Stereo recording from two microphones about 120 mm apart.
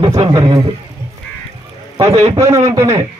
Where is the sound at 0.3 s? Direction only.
30° right (ahead or behind).